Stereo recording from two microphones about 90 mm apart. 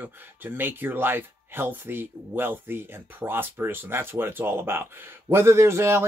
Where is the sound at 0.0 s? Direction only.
20° right (ahead or behind).